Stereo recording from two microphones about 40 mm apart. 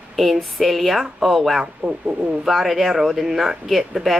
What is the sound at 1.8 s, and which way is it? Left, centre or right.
Speech, right.